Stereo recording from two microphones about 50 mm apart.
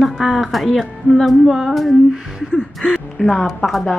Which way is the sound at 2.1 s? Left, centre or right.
Centre.